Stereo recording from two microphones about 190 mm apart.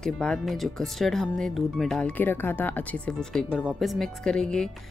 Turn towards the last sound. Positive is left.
turn(degrees=5)  # may be behind; listen again after turning